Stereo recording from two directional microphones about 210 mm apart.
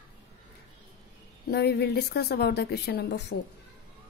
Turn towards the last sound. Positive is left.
turn(degrees=50)  # may be behind; listen again after turning